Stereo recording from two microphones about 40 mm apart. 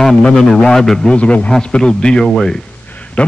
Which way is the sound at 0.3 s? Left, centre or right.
Centre.